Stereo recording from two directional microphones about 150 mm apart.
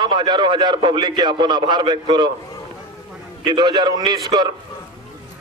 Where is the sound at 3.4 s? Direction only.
30° right (ahead or behind).